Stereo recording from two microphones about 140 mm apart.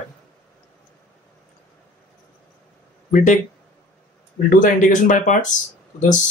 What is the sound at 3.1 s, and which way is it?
Speech, 60° left (ahead or behind).